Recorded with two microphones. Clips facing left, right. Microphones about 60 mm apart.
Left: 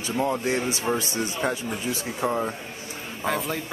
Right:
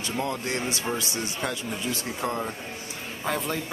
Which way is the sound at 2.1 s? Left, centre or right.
Centre.